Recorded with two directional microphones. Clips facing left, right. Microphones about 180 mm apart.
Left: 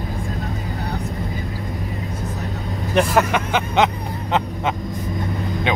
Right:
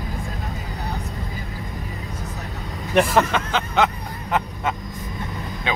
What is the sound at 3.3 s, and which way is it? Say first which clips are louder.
Speech: left 3 dB; 15° left (ahead or behind).